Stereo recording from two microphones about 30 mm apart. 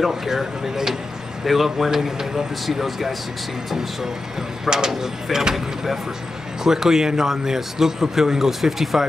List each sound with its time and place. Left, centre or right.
0.1 s speech: centre
4.6 s speech: right